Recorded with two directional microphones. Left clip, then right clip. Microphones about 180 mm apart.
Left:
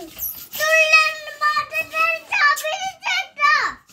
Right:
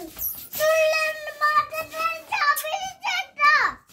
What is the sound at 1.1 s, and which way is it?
Child singing, 25° right (ahead or behind).